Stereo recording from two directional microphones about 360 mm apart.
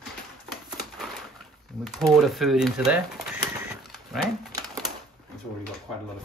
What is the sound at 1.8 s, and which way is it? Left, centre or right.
Speech, centre.